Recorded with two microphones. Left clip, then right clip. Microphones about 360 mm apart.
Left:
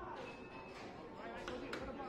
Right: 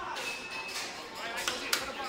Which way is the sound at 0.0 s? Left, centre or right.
Right.